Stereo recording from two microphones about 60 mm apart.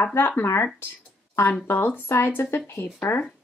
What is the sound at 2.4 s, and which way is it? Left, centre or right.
Speech, left.